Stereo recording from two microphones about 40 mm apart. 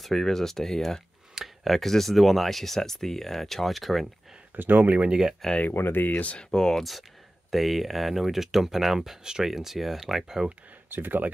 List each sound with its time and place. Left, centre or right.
0.0 s speech: centre
4.6 s speech: right
5.7 s speech: left
6.0 s speech: left
6.3 s speech: centre
6.8 s speech: centre
10.9 s speech: right